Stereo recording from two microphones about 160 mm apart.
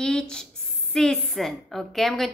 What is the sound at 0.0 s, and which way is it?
A woman's voice, 5° left (ahead or behind).